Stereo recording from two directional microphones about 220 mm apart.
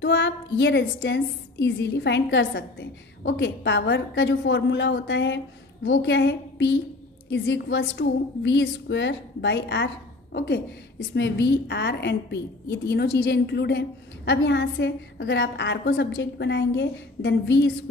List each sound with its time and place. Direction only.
0.0 s a woman's voice: 55° left (ahead or behind)